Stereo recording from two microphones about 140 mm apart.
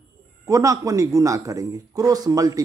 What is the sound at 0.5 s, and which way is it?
Speech, 20° right (ahead or behind).